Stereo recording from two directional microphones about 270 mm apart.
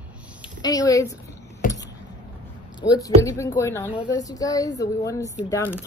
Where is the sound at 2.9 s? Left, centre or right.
Centre.